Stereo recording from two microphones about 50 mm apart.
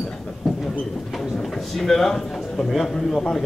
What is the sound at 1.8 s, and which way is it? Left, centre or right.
A man's voice, centre.